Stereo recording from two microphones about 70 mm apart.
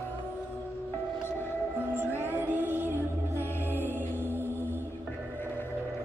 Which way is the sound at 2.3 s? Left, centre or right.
Right.